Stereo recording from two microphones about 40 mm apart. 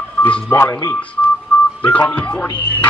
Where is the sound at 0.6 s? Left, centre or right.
Left.